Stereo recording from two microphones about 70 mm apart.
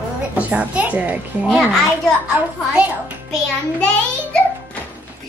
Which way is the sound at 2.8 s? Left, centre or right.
Centre.